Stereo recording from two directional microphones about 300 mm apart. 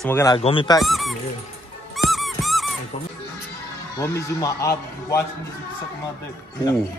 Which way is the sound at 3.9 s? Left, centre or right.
Centre.